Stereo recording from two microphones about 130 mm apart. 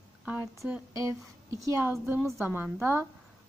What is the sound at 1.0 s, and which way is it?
Speech, 25° right (ahead or behind).